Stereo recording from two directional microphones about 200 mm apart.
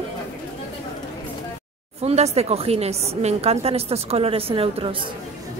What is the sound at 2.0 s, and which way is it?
A woman's voice, 30° right (ahead or behind).